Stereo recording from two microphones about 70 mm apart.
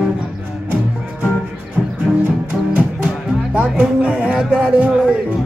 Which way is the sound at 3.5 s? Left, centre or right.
Centre.